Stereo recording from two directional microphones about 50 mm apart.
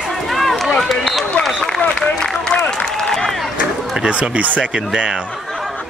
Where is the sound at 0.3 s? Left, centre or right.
Centre.